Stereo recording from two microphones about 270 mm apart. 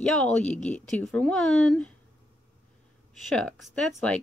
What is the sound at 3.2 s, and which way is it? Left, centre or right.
Speech, centre.